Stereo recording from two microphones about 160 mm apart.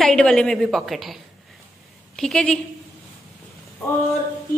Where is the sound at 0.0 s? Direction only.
5° left (ahead or behind).